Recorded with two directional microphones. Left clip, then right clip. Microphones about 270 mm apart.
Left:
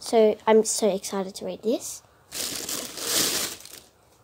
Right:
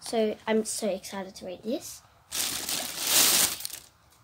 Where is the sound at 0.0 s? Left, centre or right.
Centre.